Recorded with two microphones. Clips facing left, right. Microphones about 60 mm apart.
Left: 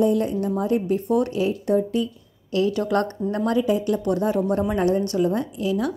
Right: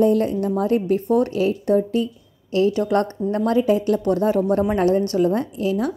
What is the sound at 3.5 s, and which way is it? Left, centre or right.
Speech, right.